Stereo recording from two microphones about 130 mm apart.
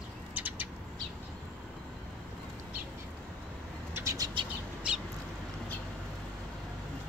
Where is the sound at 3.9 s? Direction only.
25° right (ahead or behind).